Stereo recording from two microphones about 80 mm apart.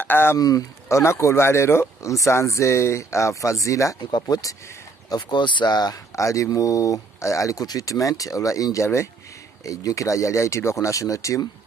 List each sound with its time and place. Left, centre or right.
0.0 s speech: left
0.4 s speech: left
0.8 s speech: left
4.0 s speech: left
5.1 s speech: left
6.1 s speech: left